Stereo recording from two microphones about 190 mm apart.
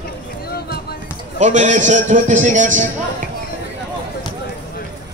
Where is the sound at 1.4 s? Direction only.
40° right (ahead or behind).